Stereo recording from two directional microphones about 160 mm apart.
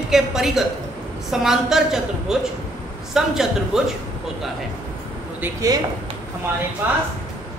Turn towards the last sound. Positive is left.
turn(degrees=-15)  # may be behind; listen again after turning